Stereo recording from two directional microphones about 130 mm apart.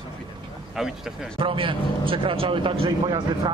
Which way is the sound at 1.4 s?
45° right (ahead or behind).